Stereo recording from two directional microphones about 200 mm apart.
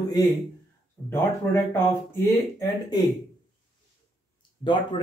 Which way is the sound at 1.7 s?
15° left (ahead or behind).